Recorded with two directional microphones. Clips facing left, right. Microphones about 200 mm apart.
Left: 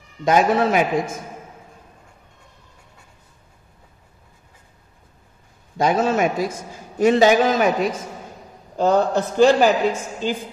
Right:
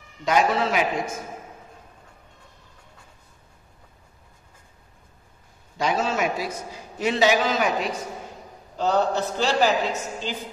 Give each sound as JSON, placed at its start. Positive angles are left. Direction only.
{"t": 0.2, "sound": "a man's voice", "side_deg": 50}
{"t": 5.8, "sound": "a man's voice", "side_deg": 50}